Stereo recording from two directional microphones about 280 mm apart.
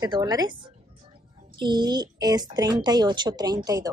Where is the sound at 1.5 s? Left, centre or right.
Centre.